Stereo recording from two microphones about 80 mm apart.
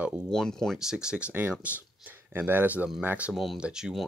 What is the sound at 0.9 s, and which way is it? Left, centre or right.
Speech, centre.